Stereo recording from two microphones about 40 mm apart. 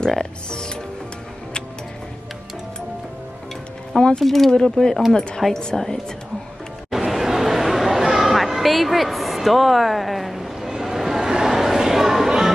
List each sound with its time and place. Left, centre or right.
0.0 s speech: centre
4.2 s speech: centre
6.9 s chatter: centre